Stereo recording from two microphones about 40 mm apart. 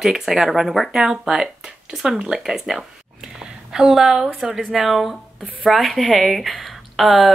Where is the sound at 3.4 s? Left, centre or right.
Centre.